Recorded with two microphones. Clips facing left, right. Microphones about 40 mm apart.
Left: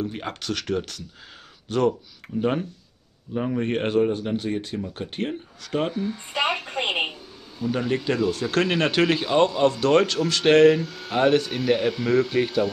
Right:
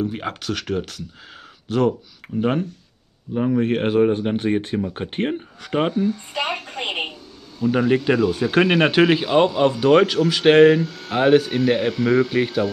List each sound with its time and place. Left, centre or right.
0.0 s speech: centre
4.0 s speech: right
6.0 s speech: centre
6.5 s a sound: centre
7.6 s speech: centre
10.8 s speech: centre
11.1 s speech: centre